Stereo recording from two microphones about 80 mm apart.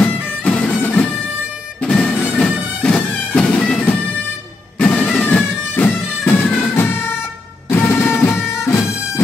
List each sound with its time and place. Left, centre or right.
0.0 s music: centre
1.8 s bagpipes: centre
4.7 s music: centre; by 9.2 s left